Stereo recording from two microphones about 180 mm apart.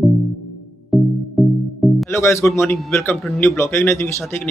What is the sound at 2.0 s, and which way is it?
A man's voice, 15° left (ahead or behind).